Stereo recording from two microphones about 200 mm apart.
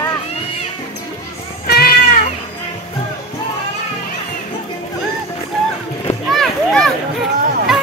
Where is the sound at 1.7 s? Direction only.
50° left (ahead or behind).